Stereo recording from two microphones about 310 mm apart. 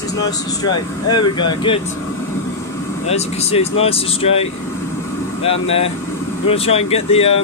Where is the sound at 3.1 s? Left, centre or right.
Centre.